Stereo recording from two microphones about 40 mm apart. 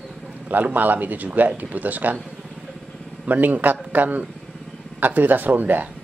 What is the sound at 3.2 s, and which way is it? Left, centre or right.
Speech, right.